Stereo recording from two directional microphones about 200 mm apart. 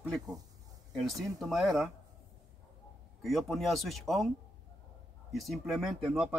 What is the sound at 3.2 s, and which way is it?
Speech, centre (ahead or behind).